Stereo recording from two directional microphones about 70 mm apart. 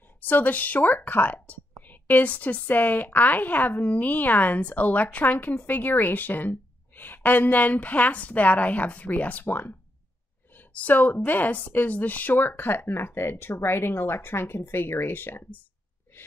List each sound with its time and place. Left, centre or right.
0.2 s a woman's voice: left